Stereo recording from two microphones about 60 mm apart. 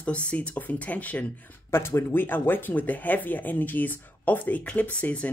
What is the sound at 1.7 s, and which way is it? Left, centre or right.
Speech, left.